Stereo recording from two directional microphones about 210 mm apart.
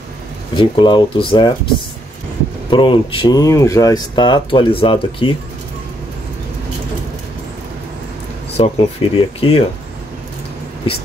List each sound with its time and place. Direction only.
0.6 s speech: 20° left (ahead or behind)
2.7 s speech: 25° left (ahead or behind)
8.5 s speech: 25° left (ahead or behind)